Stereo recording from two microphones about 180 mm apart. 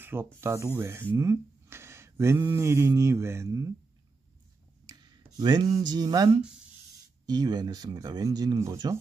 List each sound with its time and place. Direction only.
0.0 s snake: 10° right (ahead or behind)
0.4 s speech: 15° right (ahead or behind)
4.8 s a sound: 20° right (ahead or behind)
5.9 s speech: 20° right (ahead or behind)